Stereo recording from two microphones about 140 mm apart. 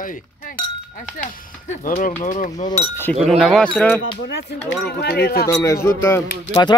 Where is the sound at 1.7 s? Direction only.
65° left (ahead or behind).